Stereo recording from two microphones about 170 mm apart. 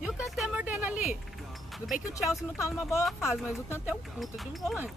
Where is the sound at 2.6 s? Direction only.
15° left (ahead or behind).